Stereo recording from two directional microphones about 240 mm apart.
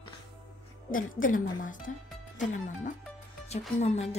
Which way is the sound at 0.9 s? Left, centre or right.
Left.